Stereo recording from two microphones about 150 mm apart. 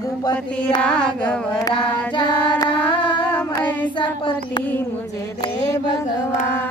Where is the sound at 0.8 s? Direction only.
5° left (ahead or behind).